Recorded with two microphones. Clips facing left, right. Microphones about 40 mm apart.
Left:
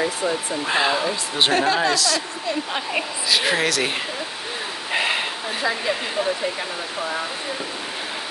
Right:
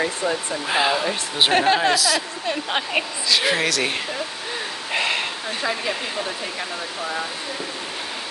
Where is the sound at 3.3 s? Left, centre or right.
Centre.